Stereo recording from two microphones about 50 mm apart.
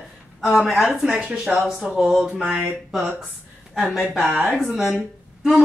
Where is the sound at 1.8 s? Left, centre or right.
Centre.